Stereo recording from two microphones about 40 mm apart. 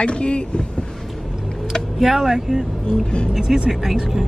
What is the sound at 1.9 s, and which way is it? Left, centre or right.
Speech, centre.